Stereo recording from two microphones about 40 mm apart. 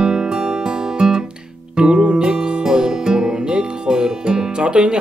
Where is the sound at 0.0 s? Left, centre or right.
Centre.